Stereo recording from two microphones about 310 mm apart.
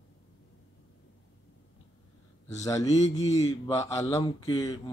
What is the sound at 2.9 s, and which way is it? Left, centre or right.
Speech, left.